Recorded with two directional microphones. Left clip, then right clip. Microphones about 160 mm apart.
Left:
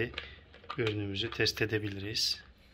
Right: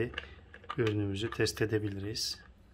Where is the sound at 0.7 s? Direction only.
45° right (ahead or behind).